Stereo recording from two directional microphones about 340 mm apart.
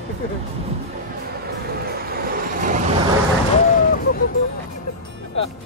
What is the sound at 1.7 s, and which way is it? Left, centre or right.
Vehicle, right.